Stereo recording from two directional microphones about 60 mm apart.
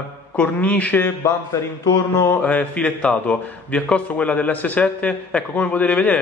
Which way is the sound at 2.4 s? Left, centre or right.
Left.